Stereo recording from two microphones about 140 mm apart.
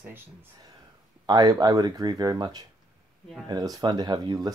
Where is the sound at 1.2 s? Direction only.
30° right (ahead or behind).